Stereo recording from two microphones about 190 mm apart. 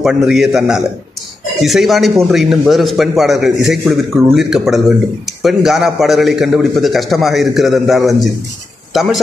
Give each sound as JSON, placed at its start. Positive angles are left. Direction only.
{"t": 0.0, "sound": "a man's voice", "side_deg": 0}